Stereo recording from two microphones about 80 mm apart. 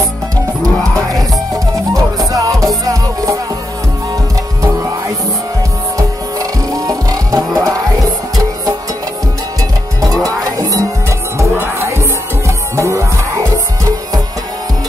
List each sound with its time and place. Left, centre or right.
2.0 s music: right
6.7 s music: right
10.2 s music: right